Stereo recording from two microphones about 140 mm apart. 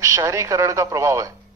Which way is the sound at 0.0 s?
20° right (ahead or behind).